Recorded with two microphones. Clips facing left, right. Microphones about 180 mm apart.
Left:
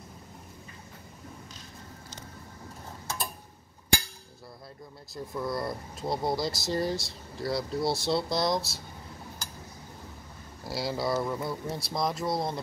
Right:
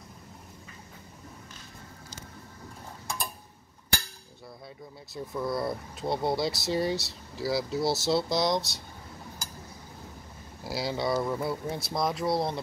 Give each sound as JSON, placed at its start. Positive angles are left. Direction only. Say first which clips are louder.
{"t": 5.1, "sound": "speech", "louder": "right 1 dB", "side_deg": 0}
{"t": 10.6, "sound": "speech", "louder": "right 1 dB", "side_deg": 0}